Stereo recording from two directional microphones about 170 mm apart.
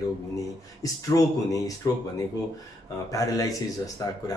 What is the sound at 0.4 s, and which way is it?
Speech, 20° left (ahead or behind).